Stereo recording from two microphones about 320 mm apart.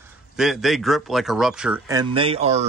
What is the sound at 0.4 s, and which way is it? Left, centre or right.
Speech, centre.